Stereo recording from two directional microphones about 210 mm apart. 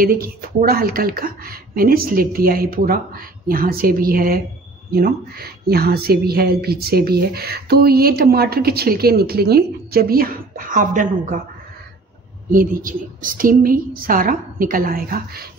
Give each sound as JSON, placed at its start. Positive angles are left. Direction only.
{"t": 0.0, "sound": "speech", "side_deg": -45}
{"t": 12.4, "sound": "speech", "side_deg": -40}